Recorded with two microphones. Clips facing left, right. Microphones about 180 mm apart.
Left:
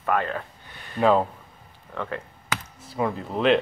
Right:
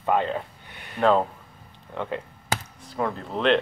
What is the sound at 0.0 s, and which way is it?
Speech, 20° right (ahead or behind).